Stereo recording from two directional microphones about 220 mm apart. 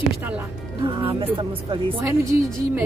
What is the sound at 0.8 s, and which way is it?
Speech, 25° right (ahead or behind).